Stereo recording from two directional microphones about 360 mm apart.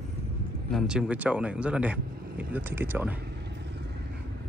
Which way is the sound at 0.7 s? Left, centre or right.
Centre.